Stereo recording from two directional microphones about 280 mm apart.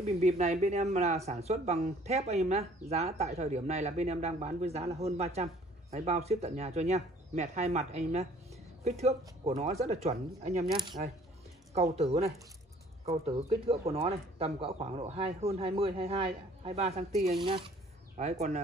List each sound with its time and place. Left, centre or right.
0.0 s speech: right
10.7 s speech: centre